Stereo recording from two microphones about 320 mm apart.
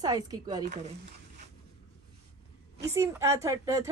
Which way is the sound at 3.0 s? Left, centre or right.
Centre.